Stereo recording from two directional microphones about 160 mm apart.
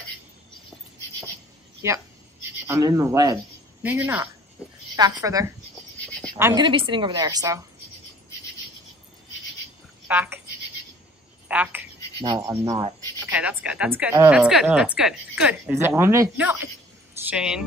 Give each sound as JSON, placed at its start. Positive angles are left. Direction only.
{"t": 1.8, "sound": "a woman's voice", "side_deg": -20}
{"t": 4.9, "sound": "a woman's voice", "side_deg": -25}
{"t": 6.6, "sound": "speech", "side_deg": -30}
{"t": 10.0, "sound": "speech", "side_deg": -10}
{"t": 11.4, "sound": "a sound", "side_deg": -10}
{"t": 12.4, "sound": "speech", "side_deg": -20}
{"t": 13.3, "sound": "a woman's voice", "side_deg": -10}
{"t": 14.3, "sound": "speech", "side_deg": -5}
{"t": 15.9, "sound": "a woman's voice", "side_deg": -15}
{"t": 17.3, "sound": "speech", "side_deg": -5}